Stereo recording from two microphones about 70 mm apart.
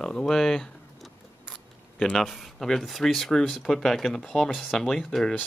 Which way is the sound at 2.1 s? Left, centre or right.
Centre.